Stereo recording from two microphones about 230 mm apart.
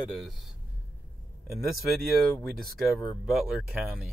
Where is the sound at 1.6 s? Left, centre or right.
Centre.